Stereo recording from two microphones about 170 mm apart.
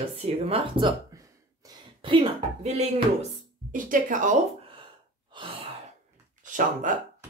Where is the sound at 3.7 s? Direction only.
50° right (ahead or behind).